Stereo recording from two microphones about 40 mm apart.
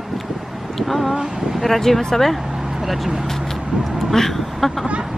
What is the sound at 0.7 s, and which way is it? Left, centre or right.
Speech, centre.